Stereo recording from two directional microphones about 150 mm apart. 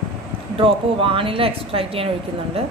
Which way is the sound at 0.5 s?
35° right (ahead or behind).